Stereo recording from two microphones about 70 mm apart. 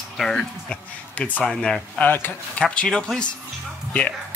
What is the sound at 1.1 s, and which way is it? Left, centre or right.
Speech, left.